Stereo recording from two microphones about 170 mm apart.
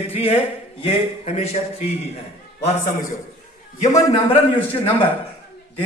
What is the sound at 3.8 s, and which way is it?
Speech, 45° left (ahead or behind).